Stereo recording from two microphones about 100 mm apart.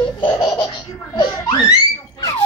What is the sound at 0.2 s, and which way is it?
Laughter, 45° left (ahead or behind).